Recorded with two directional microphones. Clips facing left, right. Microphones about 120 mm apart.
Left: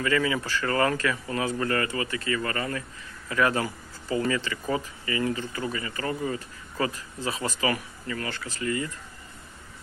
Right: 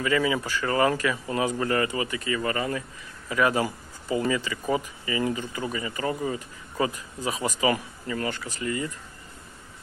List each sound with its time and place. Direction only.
0.0 s speech: 15° right (ahead or behind)